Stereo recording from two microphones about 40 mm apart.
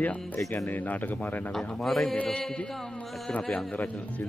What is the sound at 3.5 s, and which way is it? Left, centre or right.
Speech, left.